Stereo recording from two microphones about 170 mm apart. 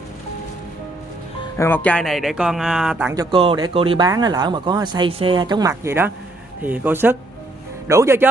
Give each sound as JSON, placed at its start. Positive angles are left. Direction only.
{"t": 1.6, "sound": "speech", "side_deg": 10}
{"t": 3.1, "sound": "speech", "side_deg": -25}